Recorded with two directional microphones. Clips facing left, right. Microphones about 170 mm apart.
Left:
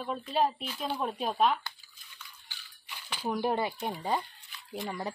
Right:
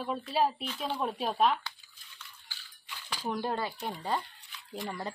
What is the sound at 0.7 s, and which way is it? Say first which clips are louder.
Speech: even; 10° left (ahead or behind).